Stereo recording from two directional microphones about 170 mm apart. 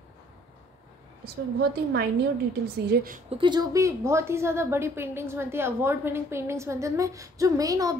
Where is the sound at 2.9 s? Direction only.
70° right (ahead or behind).